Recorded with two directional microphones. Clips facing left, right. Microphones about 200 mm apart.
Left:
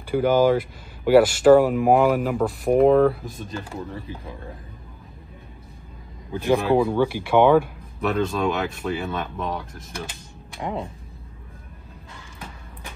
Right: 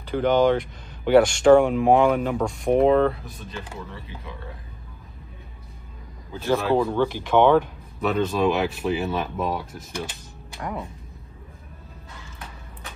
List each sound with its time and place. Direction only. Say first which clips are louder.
0.0 s speech: left 1 dB; 5° left (ahead or behind)
3.3 s speech: left 4 dB; 45° left (ahead or behind)
6.3 s speech: left 2 dB; 15° left (ahead or behind); by 9.7 s 5° right (ahead or behind)